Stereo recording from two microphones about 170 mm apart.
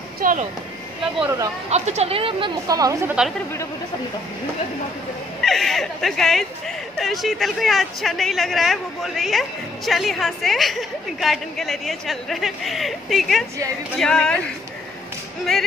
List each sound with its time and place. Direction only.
0.2 s speech: 50° right (ahead or behind)
1.2 s speech: 15° right (ahead or behind)
1.7 s a woman's voice: 40° right (ahead or behind); by 3.0 s 20° right (ahead or behind)
3.1 s a woman's voice: 5° right (ahead or behind)
5.4 s a woman's voice: centre (ahead or behind)